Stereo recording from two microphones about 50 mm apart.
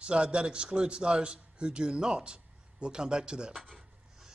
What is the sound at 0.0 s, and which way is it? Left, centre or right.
A man's voice, right.